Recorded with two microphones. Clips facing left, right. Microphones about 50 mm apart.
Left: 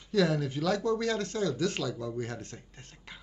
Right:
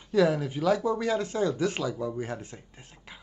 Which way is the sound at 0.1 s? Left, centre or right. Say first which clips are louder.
Right 3 dB; centre.